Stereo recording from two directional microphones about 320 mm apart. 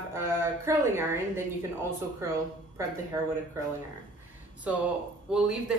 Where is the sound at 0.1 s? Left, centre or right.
Centre.